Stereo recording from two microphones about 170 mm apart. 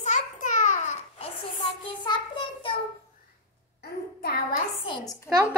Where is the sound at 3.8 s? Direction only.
65° left (ahead or behind).